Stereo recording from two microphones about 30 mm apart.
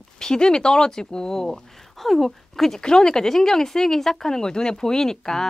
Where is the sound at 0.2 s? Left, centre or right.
Left.